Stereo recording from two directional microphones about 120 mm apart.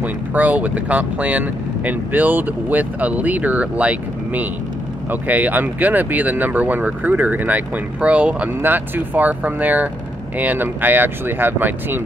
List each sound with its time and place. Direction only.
0.0 s speech: 15° right (ahead or behind)